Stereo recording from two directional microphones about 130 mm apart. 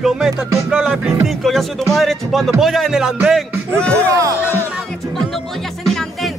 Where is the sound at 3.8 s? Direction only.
10° left (ahead or behind).